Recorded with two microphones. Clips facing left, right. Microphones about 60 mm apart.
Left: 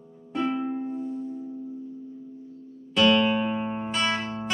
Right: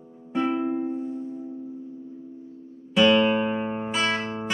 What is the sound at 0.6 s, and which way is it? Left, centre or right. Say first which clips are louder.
Music: right 4 dB; centre.